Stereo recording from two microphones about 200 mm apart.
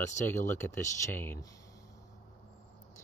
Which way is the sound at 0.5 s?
15° left (ahead or behind).